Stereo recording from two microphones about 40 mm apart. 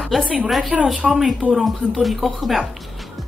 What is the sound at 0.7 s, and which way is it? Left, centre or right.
Speech, centre.